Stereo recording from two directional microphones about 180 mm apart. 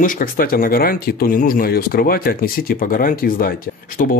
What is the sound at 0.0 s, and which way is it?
Speech, 50° left (ahead or behind).